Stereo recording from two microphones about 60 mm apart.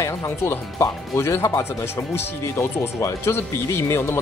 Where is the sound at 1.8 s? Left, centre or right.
Left.